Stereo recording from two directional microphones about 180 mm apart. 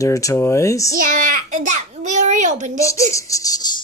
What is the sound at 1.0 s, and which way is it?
A child's voice, 45° right (ahead or behind).